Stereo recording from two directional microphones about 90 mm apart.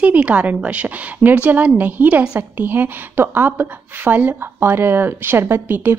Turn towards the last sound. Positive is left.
turn(degrees=-25)  # may be behind; listen again after turning